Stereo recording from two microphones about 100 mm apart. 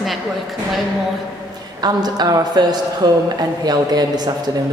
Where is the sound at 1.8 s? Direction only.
45° right (ahead or behind).